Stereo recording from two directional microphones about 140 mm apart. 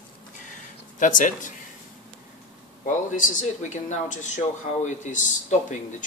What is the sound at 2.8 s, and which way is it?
Speech, 65° left (ahead or behind).